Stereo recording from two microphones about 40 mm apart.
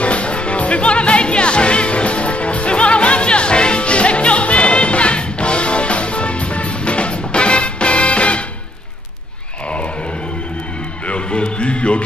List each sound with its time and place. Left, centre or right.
0.0 s music: left
11.1 s music: left